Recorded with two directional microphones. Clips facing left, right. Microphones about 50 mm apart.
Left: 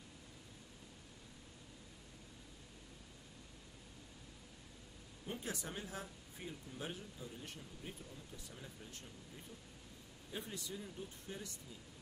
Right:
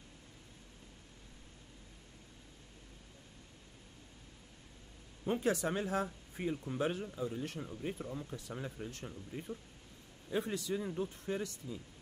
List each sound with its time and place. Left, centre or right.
5.3 s a man's voice: right